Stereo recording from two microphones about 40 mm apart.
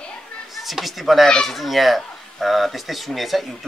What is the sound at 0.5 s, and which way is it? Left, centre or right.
Speech, centre.